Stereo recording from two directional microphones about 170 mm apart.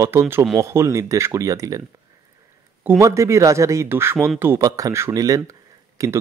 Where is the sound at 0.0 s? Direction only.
15° right (ahead or behind).